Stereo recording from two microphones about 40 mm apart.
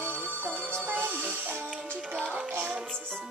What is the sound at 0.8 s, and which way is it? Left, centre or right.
Music, right.